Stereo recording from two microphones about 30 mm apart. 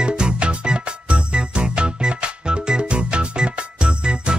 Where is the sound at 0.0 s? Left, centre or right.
Right.